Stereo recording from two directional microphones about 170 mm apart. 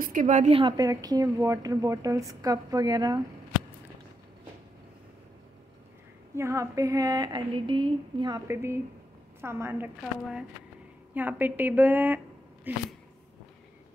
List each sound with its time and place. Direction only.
0.0 s a woman's voice: 50° right (ahead or behind); by 3.2 s 25° right (ahead or behind)
6.3 s a woman's voice: 15° right (ahead or behind)
8.5 s a woman's voice: 15° right (ahead or behind)
11.1 s a woman's voice: 10° right (ahead or behind)